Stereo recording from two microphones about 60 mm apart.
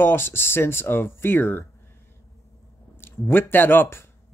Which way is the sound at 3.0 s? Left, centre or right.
Left.